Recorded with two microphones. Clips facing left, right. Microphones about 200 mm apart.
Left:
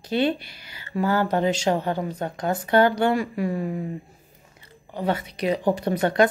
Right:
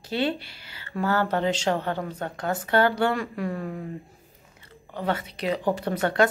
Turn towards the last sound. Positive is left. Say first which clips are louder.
# left 3 dB
turn(degrees=15)  # may be behind; listen again after turning